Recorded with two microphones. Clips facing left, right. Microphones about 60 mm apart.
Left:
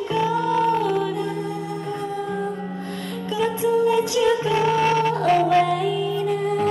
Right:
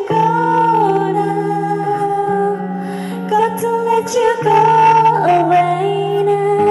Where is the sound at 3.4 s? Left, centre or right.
Centre.